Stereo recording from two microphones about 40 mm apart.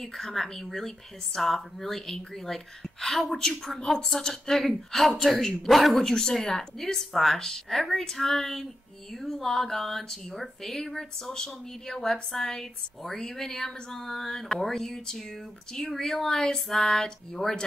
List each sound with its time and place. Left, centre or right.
0.0 s speech: centre
6.0 s speech: centre